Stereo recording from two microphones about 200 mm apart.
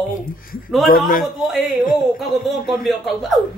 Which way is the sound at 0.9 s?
45° left (ahead or behind).